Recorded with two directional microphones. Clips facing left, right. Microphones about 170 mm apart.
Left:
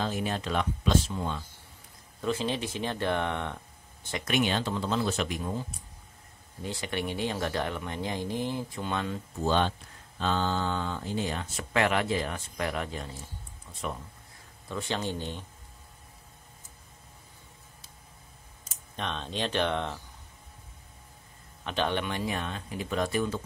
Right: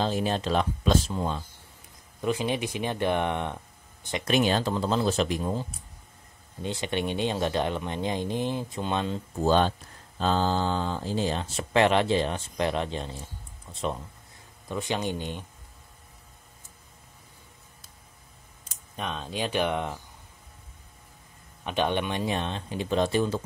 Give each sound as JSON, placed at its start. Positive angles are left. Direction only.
{"t": 0.0, "sound": "speech", "side_deg": -30}
{"t": 2.2, "sound": "speech", "side_deg": -15}
{"t": 4.2, "sound": "speech", "side_deg": -35}
{"t": 9.4, "sound": "speech", "side_deg": -40}
{"t": 18.9, "sound": "speech", "side_deg": -5}
{"t": 21.6, "sound": "speech", "side_deg": -15}